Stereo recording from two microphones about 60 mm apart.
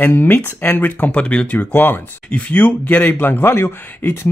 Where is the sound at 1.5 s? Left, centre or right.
Left.